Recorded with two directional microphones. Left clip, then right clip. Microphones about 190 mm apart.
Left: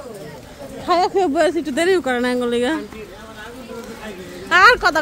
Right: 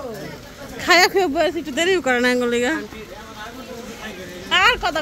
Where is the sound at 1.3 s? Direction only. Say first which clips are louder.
Left 2 dB; 30° left (ahead or behind).